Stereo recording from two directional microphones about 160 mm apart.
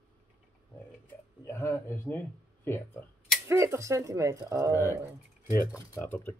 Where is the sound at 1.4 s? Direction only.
15° left (ahead or behind).